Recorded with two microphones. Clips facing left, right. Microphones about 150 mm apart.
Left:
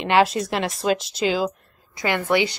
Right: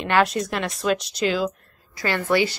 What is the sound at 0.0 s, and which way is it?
Speech, 25° left (ahead or behind).